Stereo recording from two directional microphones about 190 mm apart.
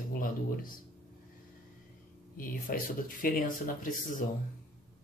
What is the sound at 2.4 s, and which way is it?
Speech, 50° left (ahead or behind).